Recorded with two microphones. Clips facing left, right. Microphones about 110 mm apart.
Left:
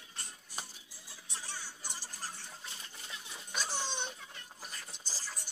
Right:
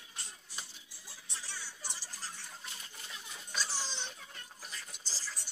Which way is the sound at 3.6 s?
55° left (ahead or behind).